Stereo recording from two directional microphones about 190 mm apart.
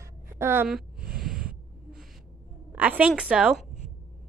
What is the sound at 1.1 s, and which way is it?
Snort, 5° right (ahead or behind).